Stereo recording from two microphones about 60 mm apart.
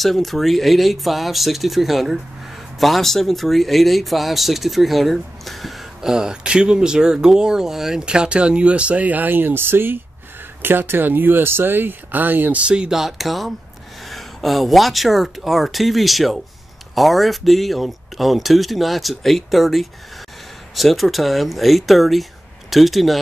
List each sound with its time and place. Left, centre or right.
0.0 s speech: centre; by 12.6 s right
12.6 s speech: centre